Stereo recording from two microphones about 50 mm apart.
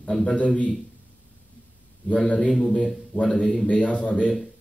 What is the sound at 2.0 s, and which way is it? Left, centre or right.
A man's voice, left.